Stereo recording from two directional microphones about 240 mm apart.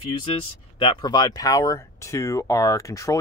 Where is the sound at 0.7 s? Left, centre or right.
Left.